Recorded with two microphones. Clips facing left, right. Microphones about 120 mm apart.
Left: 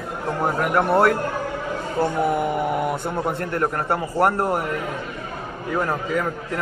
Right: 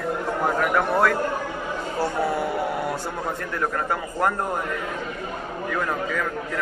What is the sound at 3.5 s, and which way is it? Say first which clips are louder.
Speech: left 2 dB; 30° left (ahead or behind).